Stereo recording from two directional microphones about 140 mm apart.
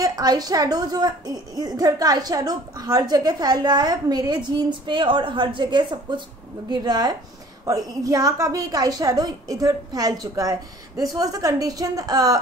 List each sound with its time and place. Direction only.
0.0 s a woman's voice: 25° right (ahead or behind)